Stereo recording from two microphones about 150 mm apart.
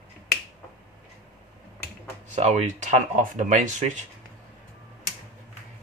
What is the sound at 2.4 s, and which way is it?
Speech, 50° right (ahead or behind).